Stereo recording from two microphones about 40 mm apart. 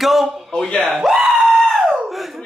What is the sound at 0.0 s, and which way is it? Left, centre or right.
Speech, centre.